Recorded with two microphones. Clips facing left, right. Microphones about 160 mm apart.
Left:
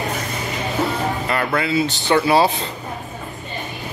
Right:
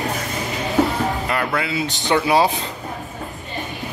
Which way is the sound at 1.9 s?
15° right (ahead or behind).